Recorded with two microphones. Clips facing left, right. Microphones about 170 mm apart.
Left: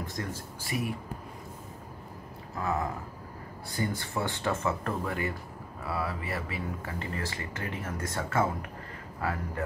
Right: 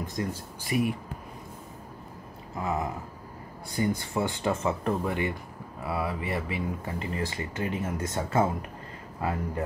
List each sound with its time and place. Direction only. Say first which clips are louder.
0.0 s speech: right 4 dB; 15° right (ahead or behind)
2.5 s speech: right 1 dB; 20° right (ahead or behind)